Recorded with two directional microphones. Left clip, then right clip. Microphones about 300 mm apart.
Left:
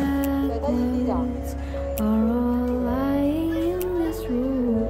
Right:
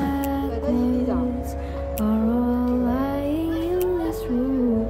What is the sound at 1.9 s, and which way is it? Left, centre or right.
Music, centre.